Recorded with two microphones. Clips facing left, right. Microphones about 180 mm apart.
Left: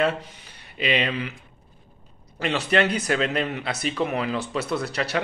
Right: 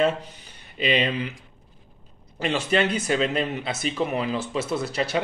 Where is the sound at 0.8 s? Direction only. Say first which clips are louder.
Right 1 dB; 35° right (ahead or behind).